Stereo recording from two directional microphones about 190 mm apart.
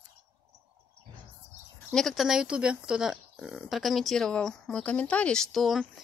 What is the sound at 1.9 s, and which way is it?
Speech, centre (ahead or behind).